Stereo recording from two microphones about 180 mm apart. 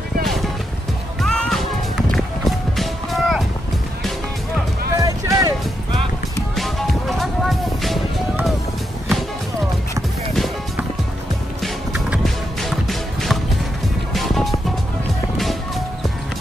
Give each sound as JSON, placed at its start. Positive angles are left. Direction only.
{"t": 0.2, "sound": "music", "side_deg": 0}
{"t": 2.0, "sound": "run", "side_deg": 0}
{"t": 4.9, "sound": "music", "side_deg": -20}
{"t": 6.5, "sound": "music", "side_deg": 0}
{"t": 10.3, "sound": "music", "side_deg": 0}